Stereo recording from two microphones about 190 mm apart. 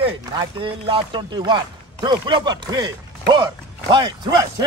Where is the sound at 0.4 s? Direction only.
25° right (ahead or behind).